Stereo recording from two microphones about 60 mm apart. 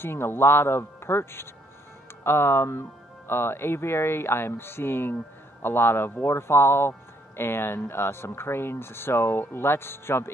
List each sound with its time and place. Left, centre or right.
0.0 s a man's voice: left